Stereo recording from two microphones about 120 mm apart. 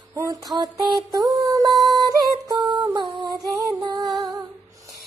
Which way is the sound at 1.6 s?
30° right (ahead or behind).